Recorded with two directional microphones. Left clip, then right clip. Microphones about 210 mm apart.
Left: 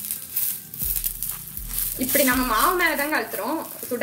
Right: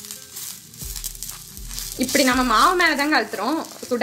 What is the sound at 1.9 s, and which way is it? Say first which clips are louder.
Speech: right 3 dB; 45° right (ahead or behind).